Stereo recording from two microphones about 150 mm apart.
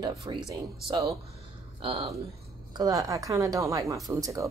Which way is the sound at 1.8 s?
40° right (ahead or behind).